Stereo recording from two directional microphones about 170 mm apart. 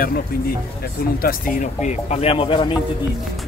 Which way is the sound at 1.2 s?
50° left (ahead or behind).